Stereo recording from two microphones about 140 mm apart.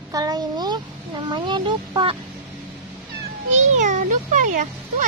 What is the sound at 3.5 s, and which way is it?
A child's voice, 60° right (ahead or behind).